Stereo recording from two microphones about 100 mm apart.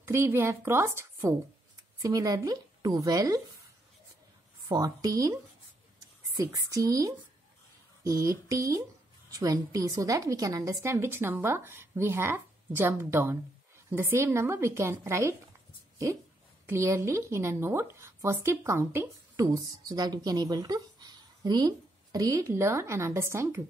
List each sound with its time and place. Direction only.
0.0 s a woman's voice: 25° right (ahead or behind)
2.0 s speech: 35° right (ahead or behind)
4.7 s a woman's voice: 40° right (ahead or behind)
16.6 s speech: 30° right (ahead or behind)
22.5 s a woman's voice: 25° right (ahead or behind)